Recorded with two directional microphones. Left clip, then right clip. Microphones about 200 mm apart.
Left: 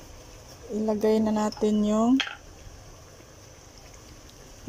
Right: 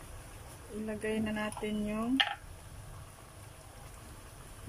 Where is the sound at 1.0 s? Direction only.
20° left (ahead or behind).